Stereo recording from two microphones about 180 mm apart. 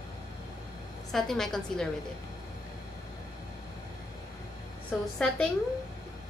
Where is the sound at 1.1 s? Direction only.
Centre (ahead or behind).